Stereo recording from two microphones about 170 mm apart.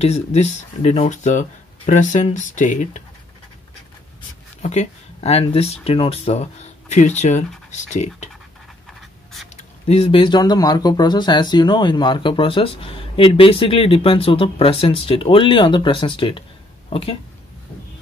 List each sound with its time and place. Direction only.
0.0 s speech: 40° left (ahead or behind)
4.6 s speech: 40° left (ahead or behind)
8.8 s writing: centre (ahead or behind)
9.8 s speech: 35° left (ahead or behind)